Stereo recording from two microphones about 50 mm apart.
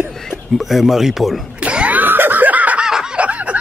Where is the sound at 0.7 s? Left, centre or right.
Centre.